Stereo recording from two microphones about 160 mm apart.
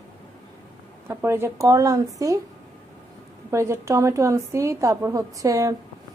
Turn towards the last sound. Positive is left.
turn(degrees=-20)  # may be behind; listen again after turning